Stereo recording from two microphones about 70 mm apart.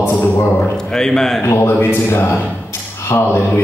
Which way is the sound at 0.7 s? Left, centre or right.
Centre.